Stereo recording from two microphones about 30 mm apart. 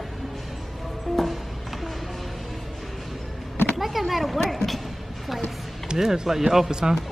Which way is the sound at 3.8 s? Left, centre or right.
Centre.